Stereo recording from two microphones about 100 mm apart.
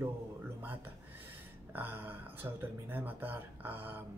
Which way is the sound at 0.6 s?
20° right (ahead or behind).